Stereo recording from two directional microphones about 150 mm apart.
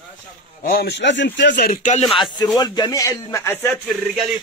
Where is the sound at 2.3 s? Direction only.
25° left (ahead or behind).